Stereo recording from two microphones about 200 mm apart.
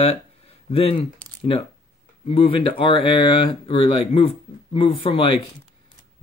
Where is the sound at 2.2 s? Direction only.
25° left (ahead or behind).